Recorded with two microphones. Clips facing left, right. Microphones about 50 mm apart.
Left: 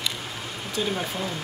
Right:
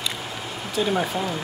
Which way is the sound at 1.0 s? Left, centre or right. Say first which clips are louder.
Right 4 dB; centre.